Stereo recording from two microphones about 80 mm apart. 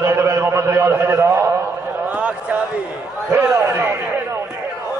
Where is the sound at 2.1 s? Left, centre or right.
Centre.